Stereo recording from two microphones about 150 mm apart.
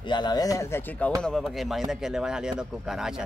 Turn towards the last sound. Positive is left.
turn(degrees=-5)  # may be behind; listen again after turning